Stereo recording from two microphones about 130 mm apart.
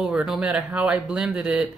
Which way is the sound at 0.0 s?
5° right (ahead or behind).